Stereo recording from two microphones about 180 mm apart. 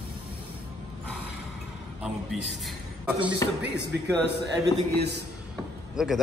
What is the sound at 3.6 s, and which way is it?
Speech, 70° right (ahead or behind).